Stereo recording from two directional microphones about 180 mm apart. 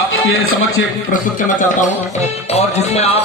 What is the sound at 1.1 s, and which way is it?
Speech, 45° left (ahead or behind).